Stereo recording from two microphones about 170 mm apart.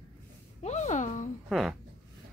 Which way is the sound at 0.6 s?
45° left (ahead or behind).